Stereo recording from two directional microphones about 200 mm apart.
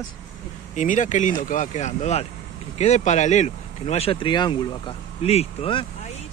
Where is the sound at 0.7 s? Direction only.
40° left (ahead or behind).